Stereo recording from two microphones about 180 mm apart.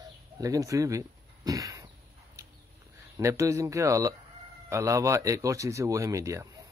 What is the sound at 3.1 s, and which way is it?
Speech, 15° right (ahead or behind).